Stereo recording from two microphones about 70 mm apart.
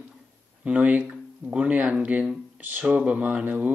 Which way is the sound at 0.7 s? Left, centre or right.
Centre.